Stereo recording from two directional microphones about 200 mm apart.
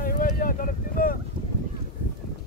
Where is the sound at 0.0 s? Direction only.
45° left (ahead or behind).